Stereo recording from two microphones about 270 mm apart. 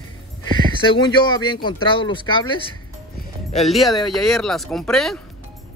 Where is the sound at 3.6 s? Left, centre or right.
Centre.